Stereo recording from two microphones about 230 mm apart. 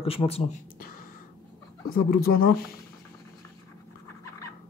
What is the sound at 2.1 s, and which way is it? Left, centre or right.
Speech, left.